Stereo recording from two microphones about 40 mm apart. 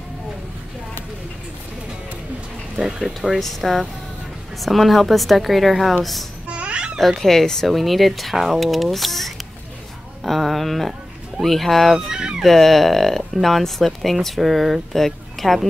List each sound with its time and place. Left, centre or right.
3.2 s speech: centre
6.5 s babbling: right
7.0 s speech: centre
12.1 s speech: centre
12.4 s speech: centre